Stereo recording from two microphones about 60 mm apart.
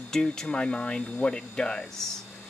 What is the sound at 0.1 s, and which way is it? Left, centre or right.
Speech, centre.